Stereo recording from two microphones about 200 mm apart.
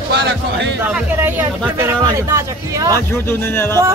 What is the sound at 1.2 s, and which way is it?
Speech, 10° right (ahead or behind).